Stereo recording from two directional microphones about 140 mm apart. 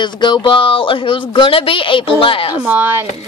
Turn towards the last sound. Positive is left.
turn(degrees=-15)  # may be behind; listen again after turning